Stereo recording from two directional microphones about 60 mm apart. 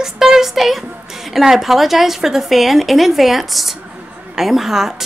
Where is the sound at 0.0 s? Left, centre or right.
Centre.